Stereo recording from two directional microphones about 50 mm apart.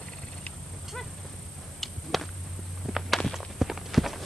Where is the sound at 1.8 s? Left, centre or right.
Centre.